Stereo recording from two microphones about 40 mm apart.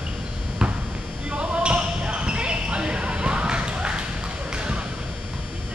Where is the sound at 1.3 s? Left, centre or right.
Right.